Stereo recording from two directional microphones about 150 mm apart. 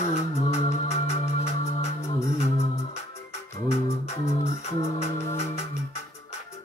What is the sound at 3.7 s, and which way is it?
Music, 45° left (ahead or behind).